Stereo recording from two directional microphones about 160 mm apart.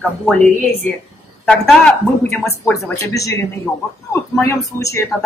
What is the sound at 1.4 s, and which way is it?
Speech, 5° left (ahead or behind).